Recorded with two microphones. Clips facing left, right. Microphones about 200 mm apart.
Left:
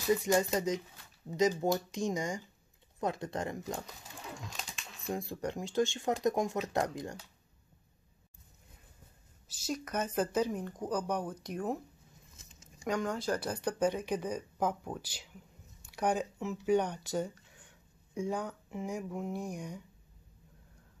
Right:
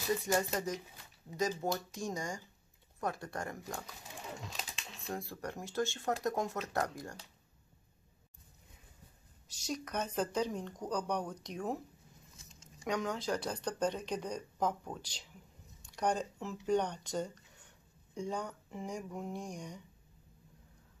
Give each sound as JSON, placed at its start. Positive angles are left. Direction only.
{"t": 0.2, "sound": "speech", "side_deg": 15}
{"t": 5.1, "sound": "speech", "side_deg": 15}
{"t": 9.5, "sound": "speech", "side_deg": 5}